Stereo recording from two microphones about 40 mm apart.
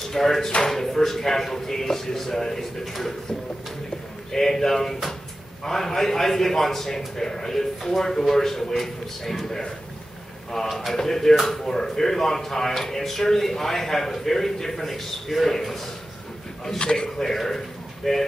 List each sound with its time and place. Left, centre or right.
0.1 s speech: centre
4.3 s a man's voice: centre
16.6 s speech: centre
17.2 s a man's voice: centre